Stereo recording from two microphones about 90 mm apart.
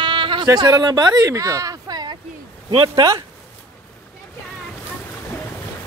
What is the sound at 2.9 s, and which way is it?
Speech, 45° right (ahead or behind).